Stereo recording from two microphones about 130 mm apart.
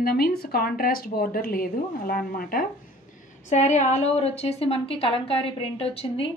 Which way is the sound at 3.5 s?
65° left (ahead or behind).